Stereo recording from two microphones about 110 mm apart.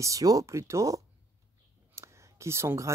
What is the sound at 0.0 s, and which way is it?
Speech, 30° right (ahead or behind).